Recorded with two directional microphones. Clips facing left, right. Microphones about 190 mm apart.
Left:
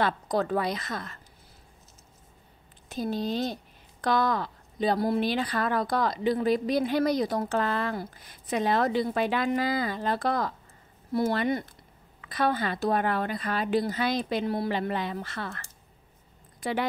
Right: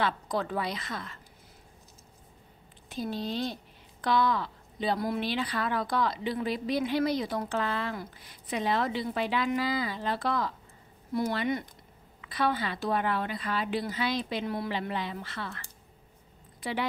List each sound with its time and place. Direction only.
0.0 s a woman's voice: 45° left (ahead or behind)
2.9 s a woman's voice: 45° left (ahead or behind)
11.1 s speech: 35° left (ahead or behind)
12.2 s a woman's voice: 45° left (ahead or behind)
14.7 s a woman's voice: 45° left (ahead or behind)
16.5 s a sound: 45° left (ahead or behind)